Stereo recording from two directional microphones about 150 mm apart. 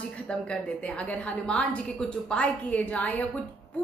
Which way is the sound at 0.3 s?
5° left (ahead or behind).